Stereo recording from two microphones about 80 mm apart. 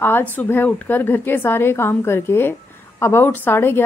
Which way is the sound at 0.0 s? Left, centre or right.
Left.